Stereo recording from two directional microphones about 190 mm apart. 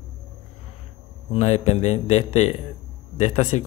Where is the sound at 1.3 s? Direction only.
35° left (ahead or behind).